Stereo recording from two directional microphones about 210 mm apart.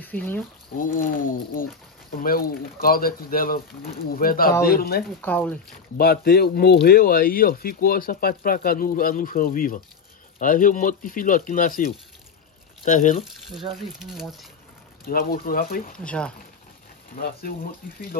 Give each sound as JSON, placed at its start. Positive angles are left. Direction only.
{"t": 0.0, "sound": "speech", "side_deg": 10}
{"t": 0.7, "sound": "speech", "side_deg": 40}
{"t": 5.2, "sound": "speech", "side_deg": 10}
{"t": 5.9, "sound": "speech", "side_deg": 45}
{"t": 12.8, "sound": "speech", "side_deg": 35}
{"t": 13.2, "sound": "speech", "side_deg": 0}
{"t": 15.0, "sound": "speech", "side_deg": 45}
{"t": 16.0, "sound": "speech", "side_deg": 5}
{"t": 17.1, "sound": "speech", "side_deg": 45}